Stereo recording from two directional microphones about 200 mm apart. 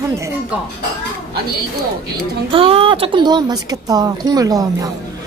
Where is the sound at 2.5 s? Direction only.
25° right (ahead or behind).